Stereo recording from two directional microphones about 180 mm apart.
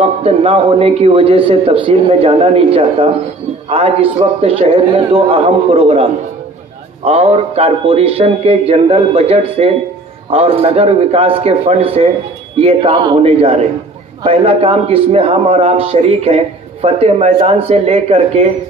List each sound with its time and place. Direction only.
0.0 s a man's voice: 35° right (ahead or behind)
7.1 s a man's voice: 35° right (ahead or behind)